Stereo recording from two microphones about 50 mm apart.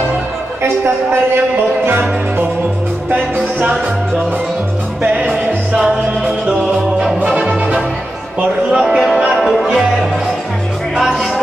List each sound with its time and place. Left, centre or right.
1.9 s music: right
3.1 s music: right
5.3 s music: centre
7.2 s music: centre
11.0 s music: centre